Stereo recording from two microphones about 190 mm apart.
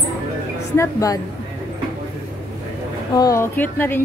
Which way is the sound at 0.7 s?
15° left (ahead or behind).